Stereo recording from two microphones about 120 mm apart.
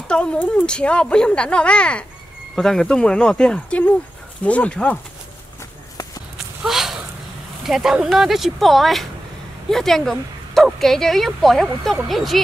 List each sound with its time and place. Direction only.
0.1 s speech: 10° left (ahead or behind)
6.3 s walk: 5° right (ahead or behind)
7.6 s speech: 5° right (ahead or behind)